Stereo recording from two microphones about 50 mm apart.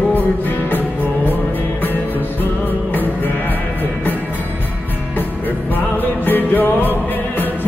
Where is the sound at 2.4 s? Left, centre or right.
Left.